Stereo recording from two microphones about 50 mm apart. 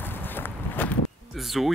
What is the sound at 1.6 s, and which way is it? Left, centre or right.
Speech, centre.